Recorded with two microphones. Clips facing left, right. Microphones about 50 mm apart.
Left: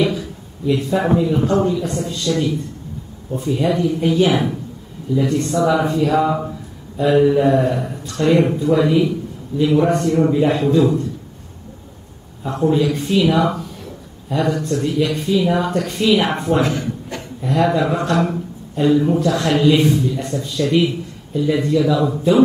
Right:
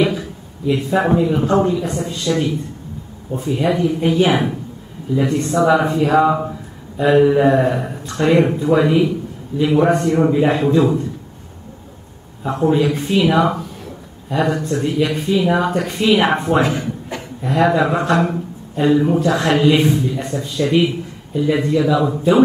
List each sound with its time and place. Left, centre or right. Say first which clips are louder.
0.0 s a sound: right 1 dB; centre
1.5 s a man's voice: right 1 dB; centre
12.4 s a man's voice: right 1 dB; centre